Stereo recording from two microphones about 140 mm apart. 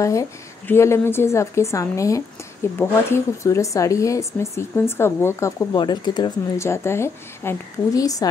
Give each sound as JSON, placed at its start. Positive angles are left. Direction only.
{"t": 0.7, "sound": "a woman's voice", "side_deg": 20}
{"t": 5.8, "sound": "speech", "side_deg": 30}
{"t": 6.6, "sound": "a woman's voice", "side_deg": 20}